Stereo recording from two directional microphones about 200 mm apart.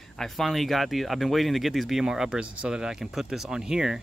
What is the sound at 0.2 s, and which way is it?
Speech, centre (ahead or behind).